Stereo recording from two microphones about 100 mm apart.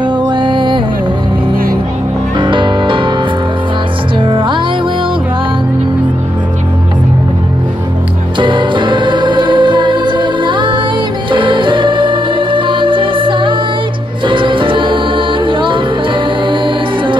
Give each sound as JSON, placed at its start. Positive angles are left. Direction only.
{"t": 0.0, "sound": "music", "side_deg": -50}
{"t": 2.3, "sound": "music", "side_deg": -55}
{"t": 4.2, "sound": "music", "side_deg": -55}
{"t": 8.4, "sound": "music", "side_deg": -55}